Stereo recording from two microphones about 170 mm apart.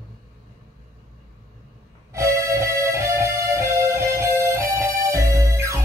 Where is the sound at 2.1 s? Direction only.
15° right (ahead or behind).